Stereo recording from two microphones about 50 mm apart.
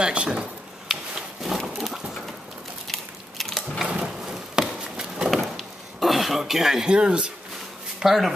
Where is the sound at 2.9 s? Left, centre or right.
Centre.